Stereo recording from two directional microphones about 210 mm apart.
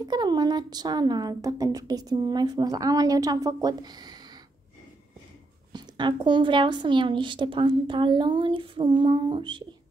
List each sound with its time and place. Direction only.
0.1 s a woman's voice: 20° right (ahead or behind)
5.7 s a woman's voice: 20° right (ahead or behind)